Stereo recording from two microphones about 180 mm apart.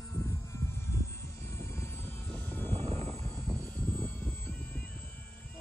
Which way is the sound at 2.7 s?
30° right (ahead or behind).